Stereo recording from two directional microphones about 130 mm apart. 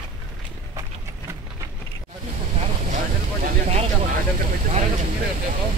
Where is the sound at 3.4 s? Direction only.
60° right (ahead or behind).